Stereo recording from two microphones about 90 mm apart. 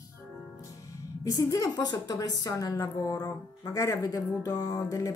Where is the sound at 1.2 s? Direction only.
40° left (ahead or behind).